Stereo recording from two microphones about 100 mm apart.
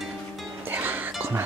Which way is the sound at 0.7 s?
20° right (ahead or behind).